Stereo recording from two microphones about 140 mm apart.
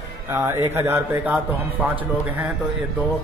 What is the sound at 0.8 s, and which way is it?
Speech, 15° right (ahead or behind).